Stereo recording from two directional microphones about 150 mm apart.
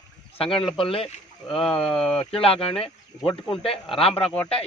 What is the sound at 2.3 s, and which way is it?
Speech, 40° left (ahead or behind).